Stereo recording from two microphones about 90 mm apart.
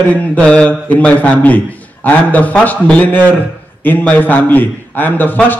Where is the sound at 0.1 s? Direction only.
15° left (ahead or behind).